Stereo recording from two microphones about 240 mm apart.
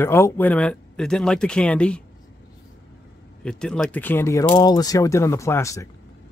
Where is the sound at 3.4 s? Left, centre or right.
Centre.